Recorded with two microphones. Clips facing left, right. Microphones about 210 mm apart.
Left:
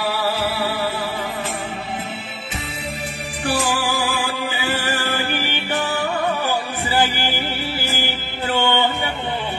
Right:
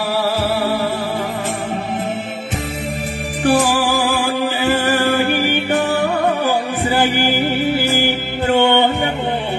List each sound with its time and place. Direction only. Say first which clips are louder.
0.1 s music: right 5 dB; 45° right (ahead or behind)
3.4 s music: right 7 dB; 50° right (ahead or behind)
7.2 s music: right 8 dB; 50° right (ahead or behind)